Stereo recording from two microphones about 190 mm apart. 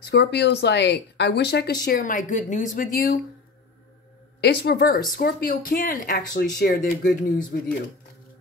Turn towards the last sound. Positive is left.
turn(degrees=45)  # may be behind; listen again after turning